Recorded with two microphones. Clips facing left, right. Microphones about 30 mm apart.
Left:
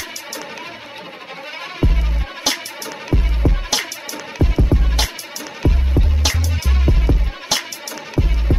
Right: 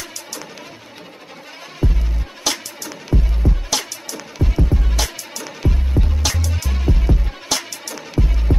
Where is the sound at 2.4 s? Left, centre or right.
Centre.